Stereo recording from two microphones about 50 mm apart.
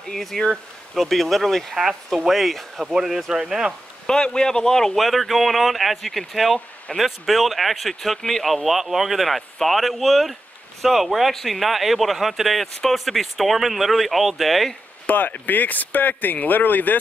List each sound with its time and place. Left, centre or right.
0.1 s speech: centre
4.1 s speech: centre
4.9 s speech: centre
15.0 s speech: left